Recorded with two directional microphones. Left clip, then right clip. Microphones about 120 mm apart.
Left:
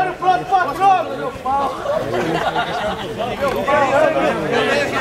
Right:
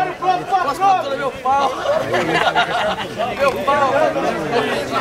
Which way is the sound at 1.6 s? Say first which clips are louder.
Right 2 dB; 30° right (ahead or behind).